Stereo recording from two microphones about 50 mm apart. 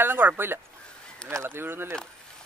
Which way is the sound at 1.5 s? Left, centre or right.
Right.